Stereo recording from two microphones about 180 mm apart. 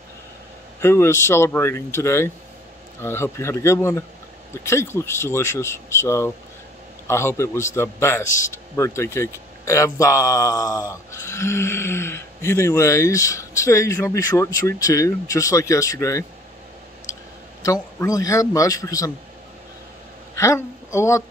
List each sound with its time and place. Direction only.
0.7 s a man's voice: 15° left (ahead or behind)
20.3 s a woman's voice: 15° left (ahead or behind)